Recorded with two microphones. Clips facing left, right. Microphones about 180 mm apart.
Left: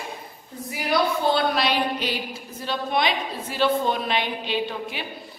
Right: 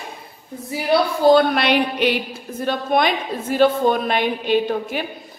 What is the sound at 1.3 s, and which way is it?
A woman's voice, 55° right (ahead or behind).